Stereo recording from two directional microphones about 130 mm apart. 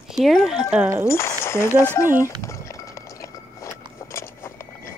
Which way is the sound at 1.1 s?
20° left (ahead or behind).